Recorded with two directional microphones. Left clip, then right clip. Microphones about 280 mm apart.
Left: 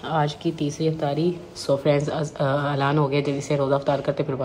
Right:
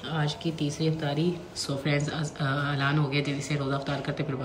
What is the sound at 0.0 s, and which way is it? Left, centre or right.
Speech, centre.